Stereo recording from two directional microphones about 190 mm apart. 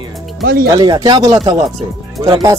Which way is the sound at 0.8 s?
20° right (ahead or behind).